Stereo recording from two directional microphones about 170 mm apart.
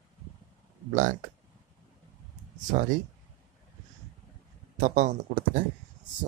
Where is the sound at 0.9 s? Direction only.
50° right (ahead or behind).